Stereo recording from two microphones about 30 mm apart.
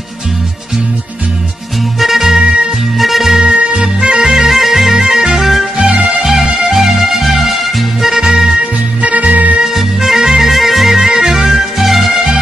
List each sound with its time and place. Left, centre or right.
2.0 s music: centre
3.5 s music: right
4.3 s music: centre
9.0 s music: right
9.8 s music: centre
10.5 s music: centre
11.0 s music: centre
11.8 s music: centre